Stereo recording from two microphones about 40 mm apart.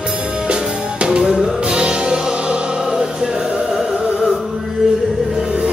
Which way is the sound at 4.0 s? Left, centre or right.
Right.